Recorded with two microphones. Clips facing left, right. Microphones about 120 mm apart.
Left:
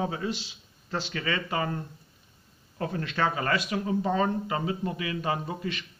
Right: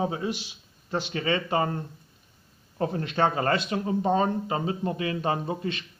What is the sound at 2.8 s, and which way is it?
Speech, 25° right (ahead or behind).